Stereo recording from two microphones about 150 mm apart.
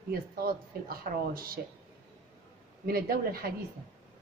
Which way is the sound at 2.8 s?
90° right.